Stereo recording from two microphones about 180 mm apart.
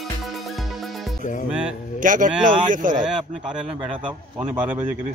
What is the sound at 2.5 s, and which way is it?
Speech, 25° right (ahead or behind).